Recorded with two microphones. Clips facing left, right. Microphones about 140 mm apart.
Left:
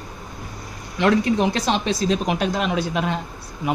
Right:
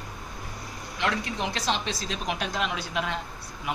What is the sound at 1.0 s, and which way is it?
Speech, 50° left (ahead or behind).